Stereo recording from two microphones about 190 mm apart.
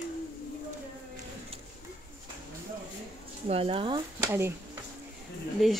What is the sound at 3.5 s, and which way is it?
Speech, 30° right (ahead or behind).